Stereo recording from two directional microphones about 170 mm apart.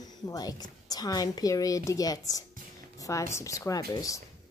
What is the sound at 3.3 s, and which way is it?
Speech, 20° left (ahead or behind).